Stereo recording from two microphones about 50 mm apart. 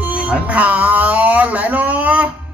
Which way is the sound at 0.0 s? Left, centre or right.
Right.